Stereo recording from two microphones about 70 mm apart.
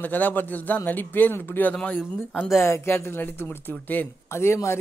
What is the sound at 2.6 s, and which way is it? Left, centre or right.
Speech, left.